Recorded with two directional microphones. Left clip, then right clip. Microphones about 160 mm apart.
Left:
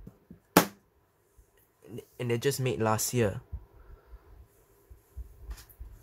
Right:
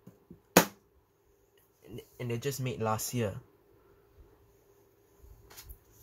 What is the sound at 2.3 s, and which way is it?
Speech, 50° left (ahead or behind).